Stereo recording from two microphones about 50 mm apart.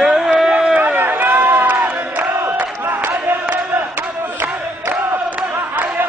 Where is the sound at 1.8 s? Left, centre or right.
Right.